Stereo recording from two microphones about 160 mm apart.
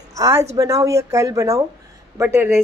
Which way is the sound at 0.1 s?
20° right (ahead or behind).